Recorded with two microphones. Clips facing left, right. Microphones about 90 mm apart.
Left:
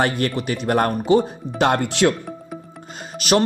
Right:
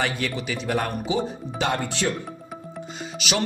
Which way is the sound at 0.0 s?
55° left (ahead or behind).